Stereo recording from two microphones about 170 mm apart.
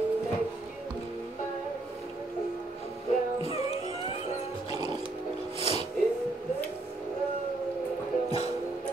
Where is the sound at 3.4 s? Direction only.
35° left (ahead or behind).